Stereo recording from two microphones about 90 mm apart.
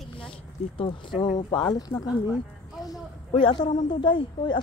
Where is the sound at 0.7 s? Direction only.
60° left (ahead or behind); by 2.0 s 45° left (ahead or behind).